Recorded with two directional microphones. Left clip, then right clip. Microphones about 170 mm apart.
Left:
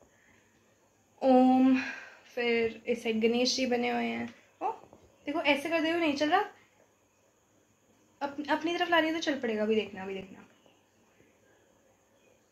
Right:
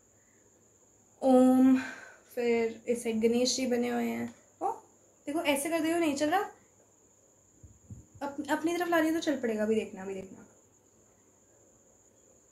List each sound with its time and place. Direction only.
1.2 s a sound: centre (ahead or behind)
2.3 s speech: 5° left (ahead or behind); by 3.9 s 20° left (ahead or behind)
3.9 s speech: centre (ahead or behind)
5.2 s a woman's voice: 25° left (ahead or behind)
8.2 s a sound: 10° left (ahead or behind)
8.5 s a woman's voice: centre (ahead or behind)